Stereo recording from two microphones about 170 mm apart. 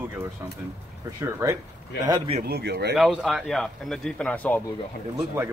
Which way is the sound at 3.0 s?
5° right (ahead or behind).